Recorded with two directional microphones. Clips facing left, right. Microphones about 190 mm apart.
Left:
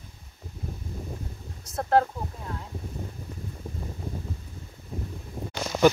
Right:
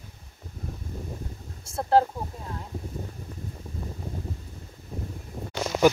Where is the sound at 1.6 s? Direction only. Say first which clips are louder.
Even; 30° right (ahead or behind).